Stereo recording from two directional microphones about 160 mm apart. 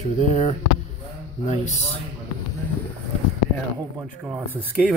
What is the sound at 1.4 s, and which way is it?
Speech, 45° left (ahead or behind).